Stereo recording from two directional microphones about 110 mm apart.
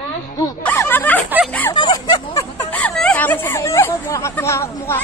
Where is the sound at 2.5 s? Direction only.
15° left (ahead or behind).